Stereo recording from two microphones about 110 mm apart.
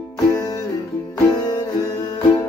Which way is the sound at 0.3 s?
30° left (ahead or behind).